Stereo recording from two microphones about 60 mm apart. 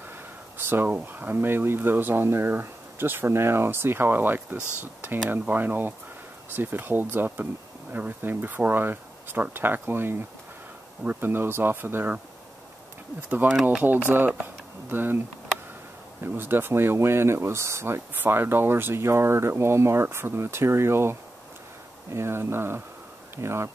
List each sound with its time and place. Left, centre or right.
0.6 s a sound: right
0.8 s speech: right
13.3 s speech: right
16.2 s speech: right
18.1 s speech: right